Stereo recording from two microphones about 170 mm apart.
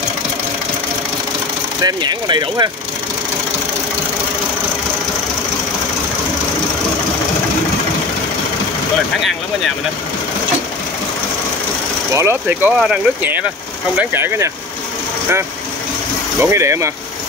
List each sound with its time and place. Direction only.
1.8 s speech: 25° right (ahead or behind)
12.1 s speech: 15° right (ahead or behind)
16.3 s speech: 15° right (ahead or behind)